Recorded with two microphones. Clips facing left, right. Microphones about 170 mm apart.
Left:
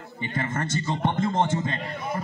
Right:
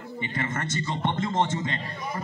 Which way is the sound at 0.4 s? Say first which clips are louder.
Left 2 dB; 35° left (ahead or behind).